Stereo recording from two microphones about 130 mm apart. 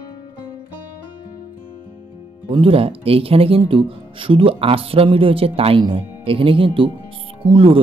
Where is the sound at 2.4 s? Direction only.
45° right (ahead or behind).